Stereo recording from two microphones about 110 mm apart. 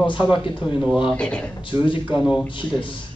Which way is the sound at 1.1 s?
10° left (ahead or behind).